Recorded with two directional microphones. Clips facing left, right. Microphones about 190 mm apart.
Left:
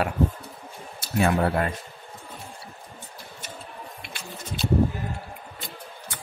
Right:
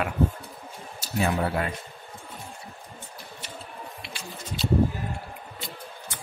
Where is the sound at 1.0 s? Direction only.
60° left (ahead or behind).